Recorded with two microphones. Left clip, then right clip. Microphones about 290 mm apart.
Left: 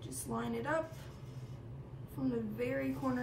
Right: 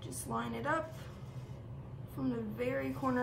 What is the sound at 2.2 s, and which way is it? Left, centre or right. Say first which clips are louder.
Speech: even; centre.